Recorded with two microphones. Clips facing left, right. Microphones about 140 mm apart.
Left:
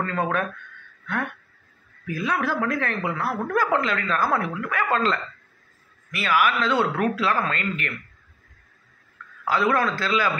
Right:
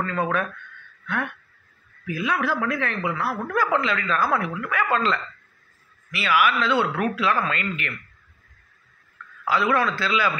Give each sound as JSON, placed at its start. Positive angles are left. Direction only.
{"t": 0.0, "sound": "speech", "side_deg": 40}
{"t": 2.0, "sound": "a man's voice", "side_deg": 40}
{"t": 9.5, "sound": "speech", "side_deg": 45}